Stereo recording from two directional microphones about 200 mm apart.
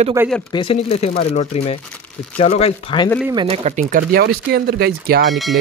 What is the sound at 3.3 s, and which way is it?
Speech, 30° right (ahead or behind).